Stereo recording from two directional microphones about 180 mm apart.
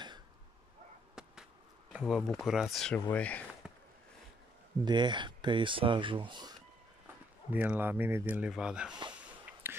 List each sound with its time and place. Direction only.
1.2 s a sound: 5° right (ahead or behind)
1.9 s speech: 5° right (ahead or behind)
3.6 s a sound: 5° right (ahead or behind)
4.8 s speech: 25° right (ahead or behind)
7.5 s speech: 10° right (ahead or behind)
9.6 s whispering: 10° right (ahead or behind)